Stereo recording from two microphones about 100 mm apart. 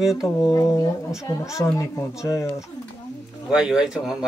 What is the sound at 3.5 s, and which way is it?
Speech, 5° right (ahead or behind).